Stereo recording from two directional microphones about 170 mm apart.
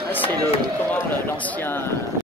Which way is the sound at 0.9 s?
10° left (ahead or behind).